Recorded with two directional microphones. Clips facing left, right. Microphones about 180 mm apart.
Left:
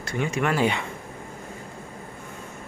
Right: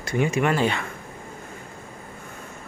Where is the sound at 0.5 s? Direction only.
15° left (ahead or behind).